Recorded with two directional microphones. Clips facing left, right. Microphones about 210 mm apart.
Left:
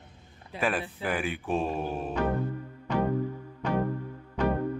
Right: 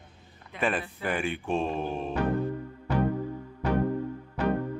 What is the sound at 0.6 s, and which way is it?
Speech, centre (ahead or behind).